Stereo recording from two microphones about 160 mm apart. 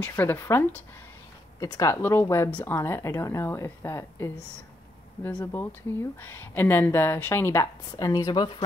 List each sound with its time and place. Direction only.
0.0 s speech: 10° left (ahead or behind)